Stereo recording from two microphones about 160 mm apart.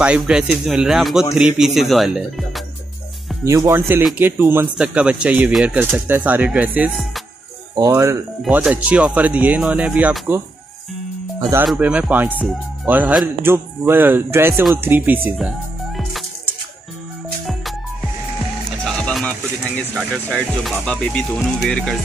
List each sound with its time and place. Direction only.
0.0 s speech: 5° right (ahead or behind)
3.4 s speech: 20° right (ahead or behind)
7.7 s speech: 20° right (ahead or behind)
8.4 s speech: 5° right (ahead or behind)
11.6 s speech: 5° right (ahead or behind)
16.0 s music: centre (ahead or behind)
18.9 s music: 5° left (ahead or behind)
20.2 s speech: 5° left (ahead or behind)